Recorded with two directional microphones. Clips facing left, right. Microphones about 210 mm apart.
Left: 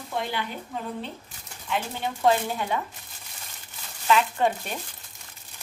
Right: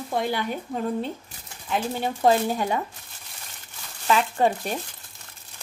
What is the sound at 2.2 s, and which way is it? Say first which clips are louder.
Speech: right 2 dB; 40° right (ahead or behind).